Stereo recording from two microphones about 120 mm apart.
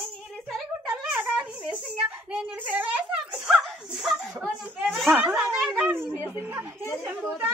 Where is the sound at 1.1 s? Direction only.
5° right (ahead or behind).